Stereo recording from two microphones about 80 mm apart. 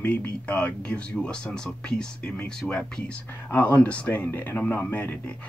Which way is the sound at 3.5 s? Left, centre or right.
Left.